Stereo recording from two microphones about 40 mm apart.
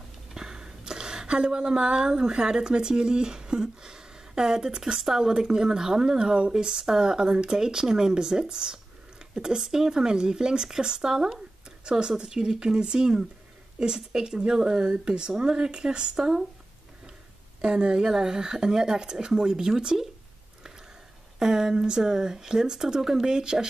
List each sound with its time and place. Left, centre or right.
0.3 s speech: centre
17.6 s speech: right
21.4 s speech: centre